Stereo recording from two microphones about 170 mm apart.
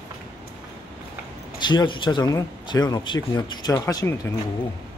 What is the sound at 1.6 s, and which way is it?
Speech, 25° left (ahead or behind).